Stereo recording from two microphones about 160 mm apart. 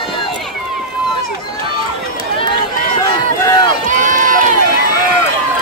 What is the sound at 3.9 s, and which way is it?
Run, 55° right (ahead or behind).